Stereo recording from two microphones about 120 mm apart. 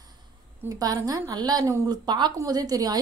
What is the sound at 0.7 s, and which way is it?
Speech, 30° right (ahead or behind).